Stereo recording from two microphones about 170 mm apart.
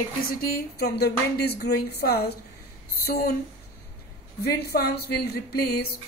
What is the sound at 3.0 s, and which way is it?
Speech, 60° left (ahead or behind).